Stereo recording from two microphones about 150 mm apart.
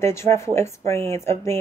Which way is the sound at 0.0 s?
20° left (ahead or behind).